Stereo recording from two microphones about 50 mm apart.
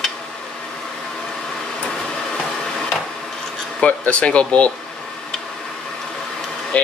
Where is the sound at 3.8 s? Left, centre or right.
Left.